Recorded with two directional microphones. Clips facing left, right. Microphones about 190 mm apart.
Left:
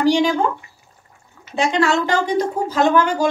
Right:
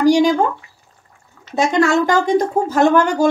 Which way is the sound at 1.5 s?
45° right (ahead or behind).